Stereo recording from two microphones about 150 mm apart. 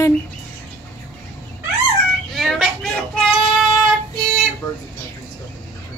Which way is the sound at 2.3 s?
Centre (ahead or behind).